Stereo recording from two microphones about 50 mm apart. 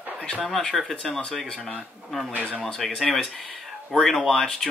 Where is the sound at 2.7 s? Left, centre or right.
Centre.